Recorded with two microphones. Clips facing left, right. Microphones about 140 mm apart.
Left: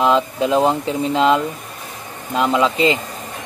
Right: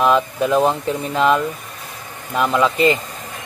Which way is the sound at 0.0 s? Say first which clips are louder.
Even; 20° left (ahead or behind).